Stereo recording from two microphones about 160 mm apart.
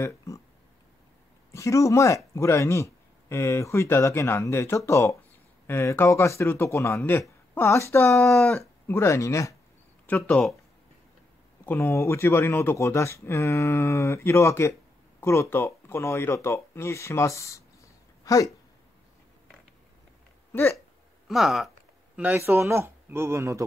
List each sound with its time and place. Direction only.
1.5 s speech: 20° left (ahead or behind)
8.3 s speech: 5° left (ahead or behind)
8.5 s speech: 15° left (ahead or behind)
10.0 s speech: 10° left (ahead or behind)
11.6 s speech: 15° left (ahead or behind)
20.5 s speech: 15° left (ahead or behind)
21.3 s speech: centre (ahead or behind)
22.1 s a man's voice: 10° right (ahead or behind)